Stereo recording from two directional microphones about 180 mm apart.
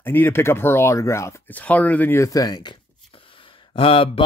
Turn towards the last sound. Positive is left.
turn(degrees=30)  # may be behind; listen again after turning